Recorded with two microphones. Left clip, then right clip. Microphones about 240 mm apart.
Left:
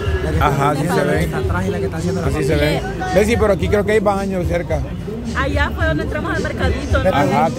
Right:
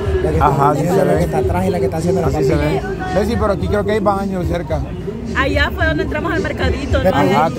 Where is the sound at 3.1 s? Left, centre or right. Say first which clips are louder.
Left 3 dB; centre.